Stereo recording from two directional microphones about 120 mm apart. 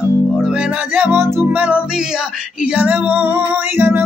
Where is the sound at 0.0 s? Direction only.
20° left (ahead or behind).